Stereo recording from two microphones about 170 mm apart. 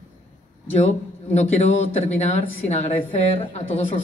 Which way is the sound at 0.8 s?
40° left (ahead or behind).